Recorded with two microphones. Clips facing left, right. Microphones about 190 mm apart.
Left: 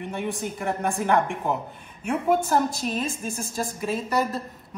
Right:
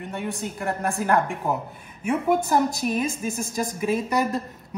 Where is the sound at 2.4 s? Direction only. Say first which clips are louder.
Right 2 dB; 15° right (ahead or behind).